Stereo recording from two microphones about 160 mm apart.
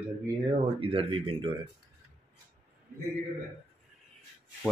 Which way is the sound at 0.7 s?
35° right (ahead or behind).